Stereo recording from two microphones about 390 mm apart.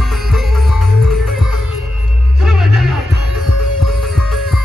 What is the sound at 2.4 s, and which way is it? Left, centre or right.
Music, centre.